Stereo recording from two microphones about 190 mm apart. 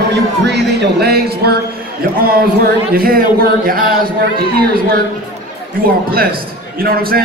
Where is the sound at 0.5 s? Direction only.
60° right (ahead or behind).